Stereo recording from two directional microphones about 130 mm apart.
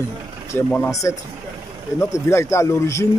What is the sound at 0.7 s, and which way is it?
Speech, 5° left (ahead or behind).